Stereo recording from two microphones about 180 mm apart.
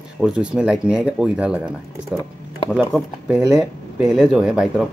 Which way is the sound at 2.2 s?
20° left (ahead or behind).